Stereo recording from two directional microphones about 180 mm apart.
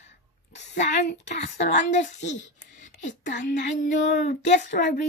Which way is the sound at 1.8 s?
40° left (ahead or behind).